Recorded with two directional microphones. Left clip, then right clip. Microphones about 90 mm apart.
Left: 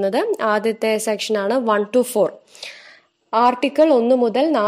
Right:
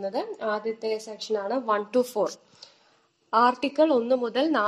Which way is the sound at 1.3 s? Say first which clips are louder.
Left 6 dB; 90° left.